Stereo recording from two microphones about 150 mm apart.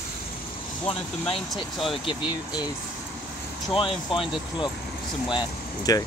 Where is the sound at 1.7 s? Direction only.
Centre (ahead or behind).